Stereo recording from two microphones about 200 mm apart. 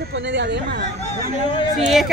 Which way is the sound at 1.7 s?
Centre (ahead or behind).